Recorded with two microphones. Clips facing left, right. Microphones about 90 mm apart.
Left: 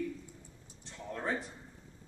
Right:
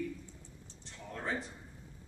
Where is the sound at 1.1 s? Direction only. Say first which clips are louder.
Left 2 dB; 5° left (ahead or behind).